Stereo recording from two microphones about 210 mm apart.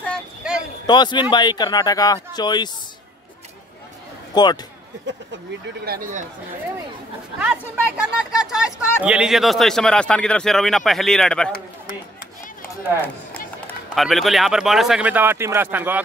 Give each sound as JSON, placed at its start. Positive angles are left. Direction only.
{"t": 0.0, "sound": "a sound", "side_deg": 0}
{"t": 0.8, "sound": "speech", "side_deg": 20}
{"t": 4.3, "sound": "speech", "side_deg": 20}
{"t": 7.3, "sound": "speech", "side_deg": -5}
{"t": 13.8, "sound": "speech", "side_deg": 0}